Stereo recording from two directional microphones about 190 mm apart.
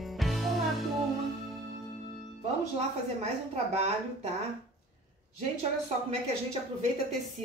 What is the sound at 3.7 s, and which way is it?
Speech, 35° right (ahead or behind).